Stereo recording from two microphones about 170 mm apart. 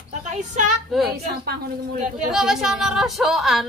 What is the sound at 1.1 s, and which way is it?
Speech, 65° right (ahead or behind).